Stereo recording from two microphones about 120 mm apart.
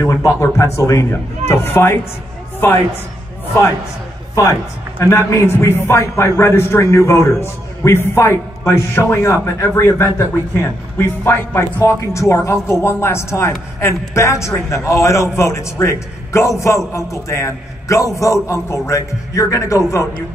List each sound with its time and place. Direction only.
0.0 s a man's voice: 25° left (ahead or behind)
4.4 s a man's voice: 25° left (ahead or behind)